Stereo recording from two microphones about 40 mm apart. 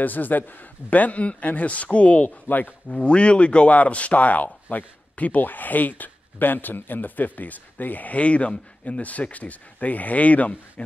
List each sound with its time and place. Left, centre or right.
0.0 s speech: left
2.9 s speech: left